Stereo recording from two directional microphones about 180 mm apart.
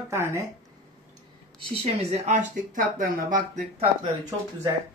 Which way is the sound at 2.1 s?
40° right (ahead or behind).